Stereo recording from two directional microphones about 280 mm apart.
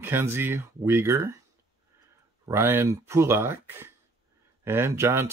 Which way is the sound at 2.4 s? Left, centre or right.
Centre.